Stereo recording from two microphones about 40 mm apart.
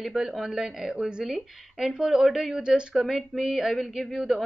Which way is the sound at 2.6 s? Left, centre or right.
Right.